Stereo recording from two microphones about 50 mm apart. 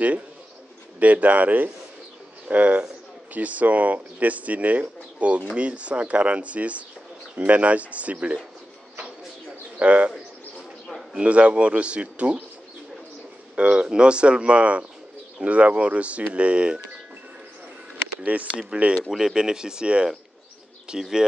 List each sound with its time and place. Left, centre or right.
0.9 s speech: right
9.8 s speech: right
11.1 s speech: right
13.6 s speech: centre
18.2 s speech: right
19.0 s speech: centre